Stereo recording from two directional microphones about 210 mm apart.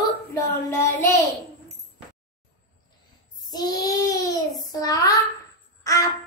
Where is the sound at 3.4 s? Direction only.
20° left (ahead or behind).